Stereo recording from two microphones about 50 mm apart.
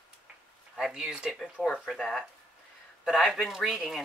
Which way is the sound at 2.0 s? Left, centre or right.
Centre.